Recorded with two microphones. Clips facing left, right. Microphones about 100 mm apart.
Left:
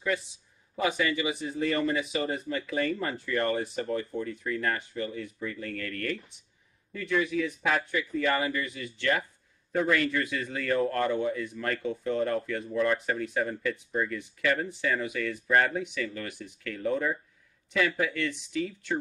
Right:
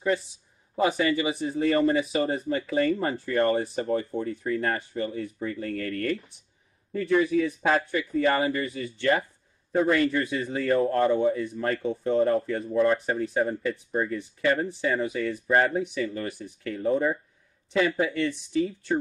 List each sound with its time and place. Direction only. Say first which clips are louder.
0.7 s speech: right 4 dB; 30° right (ahead or behind)